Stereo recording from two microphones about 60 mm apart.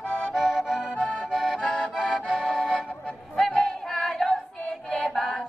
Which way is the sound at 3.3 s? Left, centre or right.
Centre.